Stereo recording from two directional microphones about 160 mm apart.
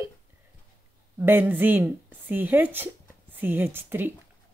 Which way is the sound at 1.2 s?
10° right (ahead or behind).